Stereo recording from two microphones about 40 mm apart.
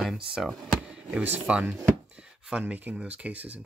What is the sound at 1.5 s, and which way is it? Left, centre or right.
Speech, right.